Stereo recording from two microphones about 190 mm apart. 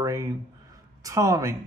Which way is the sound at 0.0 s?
15° right (ahead or behind).